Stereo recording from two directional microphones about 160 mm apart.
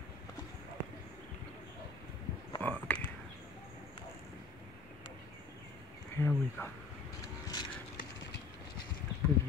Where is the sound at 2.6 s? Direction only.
10° left (ahead or behind).